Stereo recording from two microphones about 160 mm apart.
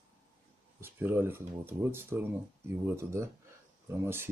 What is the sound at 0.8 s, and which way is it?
Speech, 15° right (ahead or behind).